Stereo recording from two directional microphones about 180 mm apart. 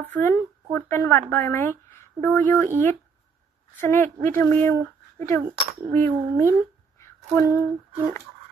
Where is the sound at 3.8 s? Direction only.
10° left (ahead or behind).